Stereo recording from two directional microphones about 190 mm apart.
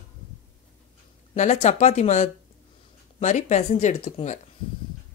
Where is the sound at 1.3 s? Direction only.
40° left (ahead or behind).